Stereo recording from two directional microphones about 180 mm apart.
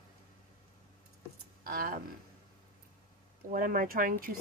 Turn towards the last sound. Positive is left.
turn(degrees=-50)  # may be behind; listen again after turning